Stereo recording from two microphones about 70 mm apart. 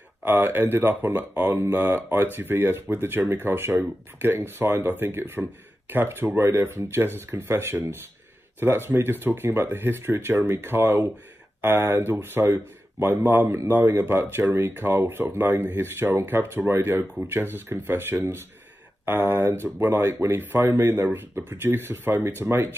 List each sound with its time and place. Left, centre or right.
0.2 s speech: right
13.5 s speech: right
20.9 s speech: right